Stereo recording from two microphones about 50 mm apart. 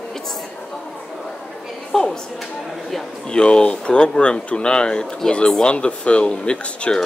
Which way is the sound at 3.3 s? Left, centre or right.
Centre.